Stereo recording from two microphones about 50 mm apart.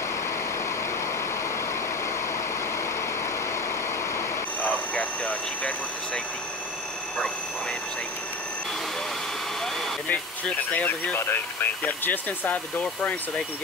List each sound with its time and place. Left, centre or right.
4.6 s vehicle: left
10.7 s speech: left